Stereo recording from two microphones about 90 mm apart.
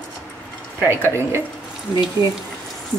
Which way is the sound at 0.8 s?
25° right (ahead or behind).